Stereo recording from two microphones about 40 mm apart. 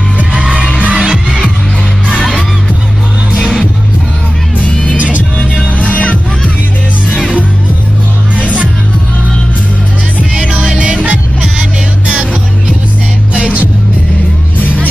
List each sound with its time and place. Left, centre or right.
0.4 s music: right
3.3 s music: centre
4.6 s music: left
8.4 s music: right
10.5 s music: right